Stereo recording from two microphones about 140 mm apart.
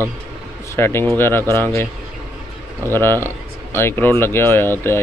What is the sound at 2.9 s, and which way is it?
Speech, 15° left (ahead or behind).